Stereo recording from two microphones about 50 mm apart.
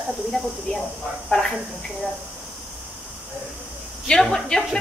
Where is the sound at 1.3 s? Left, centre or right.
Left.